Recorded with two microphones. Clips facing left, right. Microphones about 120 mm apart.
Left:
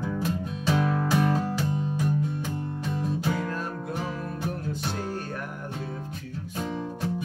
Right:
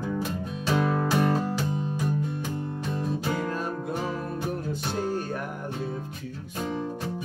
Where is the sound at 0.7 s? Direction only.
5° right (ahead or behind).